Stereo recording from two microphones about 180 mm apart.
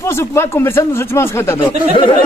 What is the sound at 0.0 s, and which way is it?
Mantra, 15° left (ahead or behind).